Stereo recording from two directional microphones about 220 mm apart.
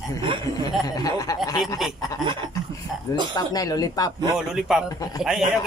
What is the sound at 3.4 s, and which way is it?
Speech, 15° left (ahead or behind).